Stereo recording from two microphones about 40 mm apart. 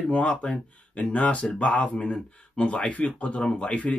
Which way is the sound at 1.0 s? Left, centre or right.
Left.